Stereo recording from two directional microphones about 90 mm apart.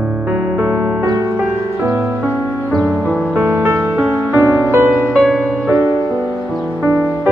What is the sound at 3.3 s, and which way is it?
Music, 20° right (ahead or behind).